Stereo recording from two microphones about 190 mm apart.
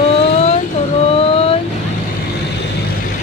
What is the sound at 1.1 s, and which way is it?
Vehicle, 30° left (ahead or behind).